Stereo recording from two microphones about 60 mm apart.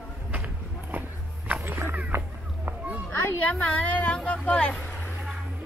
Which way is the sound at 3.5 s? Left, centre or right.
Left.